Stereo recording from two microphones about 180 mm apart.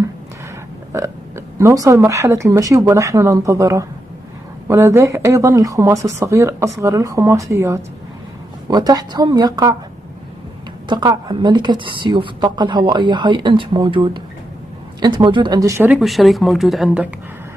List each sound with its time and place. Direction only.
1.6 s a woman's voice: 15° right (ahead or behind)
10.9 s a woman's voice: 25° right (ahead or behind)
15.8 s speech: 5° right (ahead or behind)